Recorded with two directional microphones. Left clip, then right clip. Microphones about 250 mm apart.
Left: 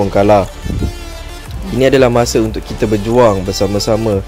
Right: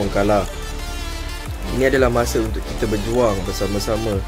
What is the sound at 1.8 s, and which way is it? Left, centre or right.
Speech, left.